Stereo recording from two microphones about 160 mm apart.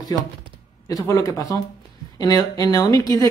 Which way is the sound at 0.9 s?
20° left (ahead or behind).